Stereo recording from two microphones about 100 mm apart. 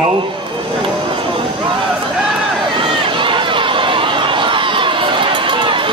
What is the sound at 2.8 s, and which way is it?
Run, 55° right (ahead or behind).